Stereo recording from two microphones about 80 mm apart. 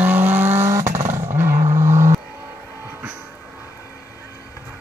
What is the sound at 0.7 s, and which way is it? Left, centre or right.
Vehicle, right.